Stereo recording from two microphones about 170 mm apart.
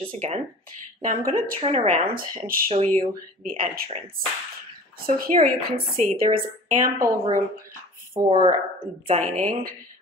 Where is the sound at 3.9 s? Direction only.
35° right (ahead or behind).